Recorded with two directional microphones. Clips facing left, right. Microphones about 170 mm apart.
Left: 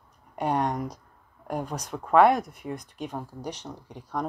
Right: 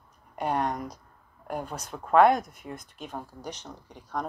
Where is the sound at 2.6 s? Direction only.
35° left (ahead or behind).